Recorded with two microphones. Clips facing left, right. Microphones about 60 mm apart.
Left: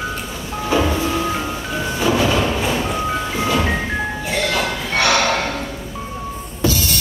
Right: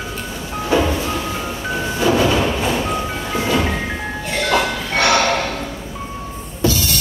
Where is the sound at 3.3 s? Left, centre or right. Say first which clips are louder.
Right 2 dB; right.